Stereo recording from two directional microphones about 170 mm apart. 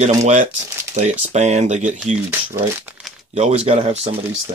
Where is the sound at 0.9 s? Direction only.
45° right (ahead or behind).